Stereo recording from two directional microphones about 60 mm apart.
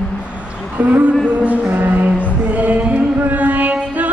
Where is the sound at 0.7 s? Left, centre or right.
Right.